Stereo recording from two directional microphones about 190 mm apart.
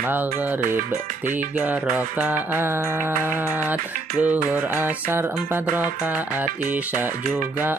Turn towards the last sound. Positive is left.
turn(degrees=-10)  # may be behind; listen again after turning